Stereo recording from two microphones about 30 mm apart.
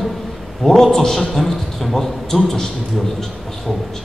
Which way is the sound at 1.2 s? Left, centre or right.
Centre.